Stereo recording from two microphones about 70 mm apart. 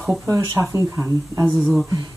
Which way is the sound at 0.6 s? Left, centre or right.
Right.